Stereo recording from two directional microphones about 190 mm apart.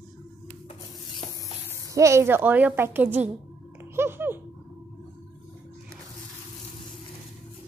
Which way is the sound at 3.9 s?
10° right (ahead or behind).